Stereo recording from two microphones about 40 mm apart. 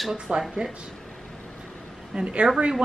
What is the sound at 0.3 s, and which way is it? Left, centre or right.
Speech, centre.